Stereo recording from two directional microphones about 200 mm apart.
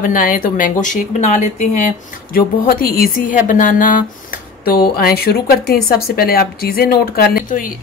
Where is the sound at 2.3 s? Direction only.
45° left (ahead or behind).